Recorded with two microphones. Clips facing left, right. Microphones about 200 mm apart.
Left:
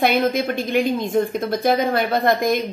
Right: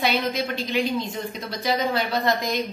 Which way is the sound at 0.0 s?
50° left (ahead or behind).